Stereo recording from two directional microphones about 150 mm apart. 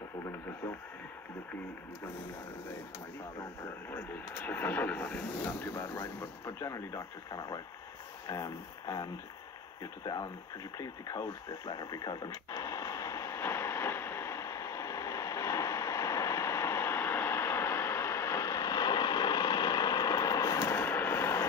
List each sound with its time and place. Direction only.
3.9 s speech: 15° left (ahead or behind)
8.3 s speech: 25° left (ahead or behind)
10.8 s radio: 25° left (ahead or behind)